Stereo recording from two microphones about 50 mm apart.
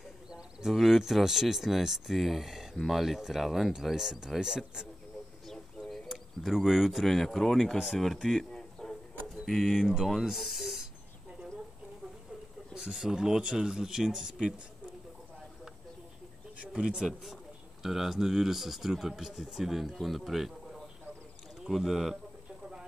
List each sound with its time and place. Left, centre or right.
0.3 s speech: centre
5.5 s a sound: centre
6.0 s speech: centre
7.1 s speech: centre
7.7 s speech: centre
8.0 s a sound: centre
9.5 s speech: centre
10.2 s a sound: centre
12.7 s speech: centre
16.7 s speech: centre
17.8 s speech: centre